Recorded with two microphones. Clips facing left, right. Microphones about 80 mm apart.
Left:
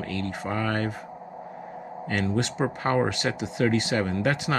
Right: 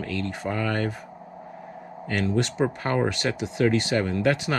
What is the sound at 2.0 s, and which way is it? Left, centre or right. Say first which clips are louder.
Speech: right 2 dB; left.